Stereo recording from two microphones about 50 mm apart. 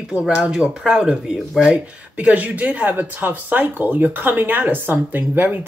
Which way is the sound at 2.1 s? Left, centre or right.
Right.